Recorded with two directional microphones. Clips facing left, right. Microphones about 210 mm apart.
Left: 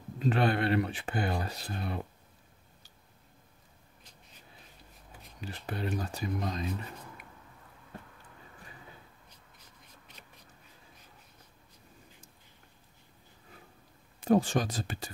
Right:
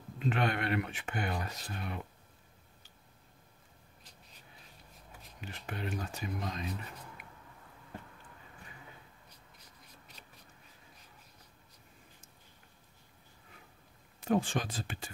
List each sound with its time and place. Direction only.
0.2 s speech: 35° left (ahead or behind)
5.4 s speech: 35° left (ahead or behind)
7.2 s a sound: 40° left (ahead or behind)
14.2 s speech: 40° left (ahead or behind)